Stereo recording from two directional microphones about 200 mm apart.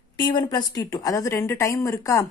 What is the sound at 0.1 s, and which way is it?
A woman's voice, 20° left (ahead or behind).